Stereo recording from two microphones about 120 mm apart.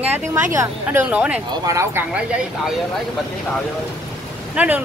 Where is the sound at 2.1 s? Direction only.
10° right (ahead or behind).